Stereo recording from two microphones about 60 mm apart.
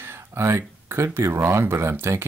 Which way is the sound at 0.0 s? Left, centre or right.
Right.